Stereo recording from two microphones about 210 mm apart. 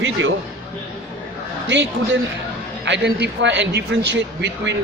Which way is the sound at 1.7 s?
60° right (ahead or behind).